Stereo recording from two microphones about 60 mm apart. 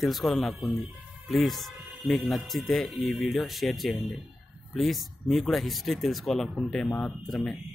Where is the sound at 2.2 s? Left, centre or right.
Centre.